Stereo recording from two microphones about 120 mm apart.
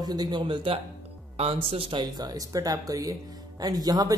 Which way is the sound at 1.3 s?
55° right (ahead or behind).